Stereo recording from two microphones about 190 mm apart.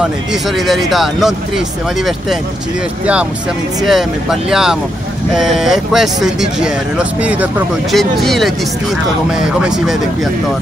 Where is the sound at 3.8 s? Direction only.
Centre (ahead or behind).